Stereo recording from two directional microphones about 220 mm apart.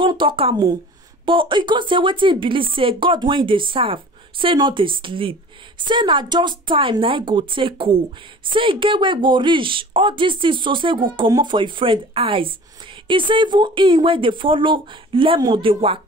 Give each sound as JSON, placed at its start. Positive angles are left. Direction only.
{"t": 0.0, "sound": "a woman's voice", "side_deg": -20}